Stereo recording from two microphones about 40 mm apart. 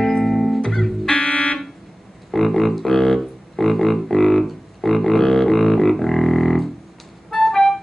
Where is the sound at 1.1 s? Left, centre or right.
Left.